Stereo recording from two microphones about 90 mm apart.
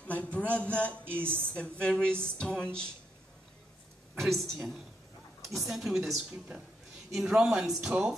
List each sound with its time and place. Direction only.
0.0 s a man's voice: 15° left (ahead or behind)
1.0 s speech: 25° right (ahead or behind)
1.5 s speech: 10° left (ahead or behind)
4.1 s a man's voice: 5° left (ahead or behind)
7.1 s a man's voice: 5° right (ahead or behind)